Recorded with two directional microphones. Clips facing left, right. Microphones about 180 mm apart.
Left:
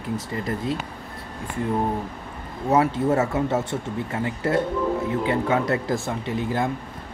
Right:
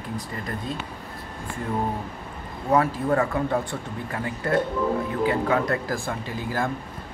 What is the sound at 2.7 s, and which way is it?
Speech, 20° left (ahead or behind).